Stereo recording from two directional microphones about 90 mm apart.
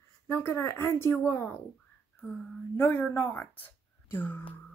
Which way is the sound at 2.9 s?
20° left (ahead or behind).